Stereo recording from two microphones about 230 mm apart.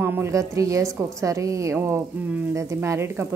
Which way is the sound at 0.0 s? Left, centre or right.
Centre.